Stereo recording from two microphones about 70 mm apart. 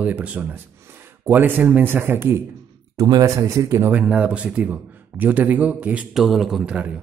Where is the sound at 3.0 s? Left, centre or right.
Right.